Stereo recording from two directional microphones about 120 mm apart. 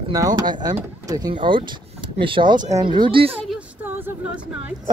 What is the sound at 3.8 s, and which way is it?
Speech, 15° right (ahead or behind).